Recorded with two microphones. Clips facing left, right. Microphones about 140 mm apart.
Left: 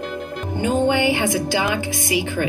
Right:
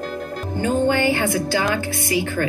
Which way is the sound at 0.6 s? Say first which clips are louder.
Even; 20° left (ahead or behind).